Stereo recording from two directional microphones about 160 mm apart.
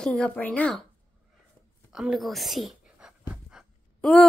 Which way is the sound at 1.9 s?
5° right (ahead or behind).